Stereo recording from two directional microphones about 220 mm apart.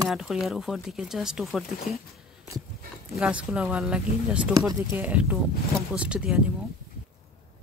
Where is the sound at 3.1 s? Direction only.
5° right (ahead or behind).